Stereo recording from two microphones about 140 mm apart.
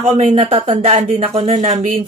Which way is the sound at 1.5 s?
60° right (ahead or behind).